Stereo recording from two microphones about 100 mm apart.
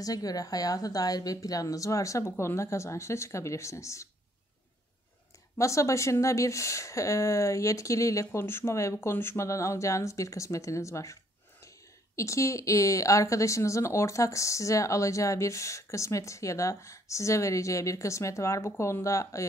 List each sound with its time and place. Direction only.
0.0 s a woman's voice: 40° left (ahead or behind)
5.6 s a woman's voice: 30° left (ahead or behind)
12.2 s a woman's voice: 30° left (ahead or behind)